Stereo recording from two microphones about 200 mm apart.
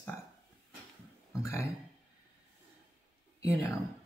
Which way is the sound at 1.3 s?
15° left (ahead or behind).